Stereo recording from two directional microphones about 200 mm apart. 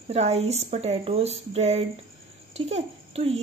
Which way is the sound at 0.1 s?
30° right (ahead or behind).